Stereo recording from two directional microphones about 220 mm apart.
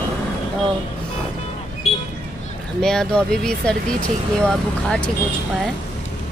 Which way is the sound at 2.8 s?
5° left (ahead or behind).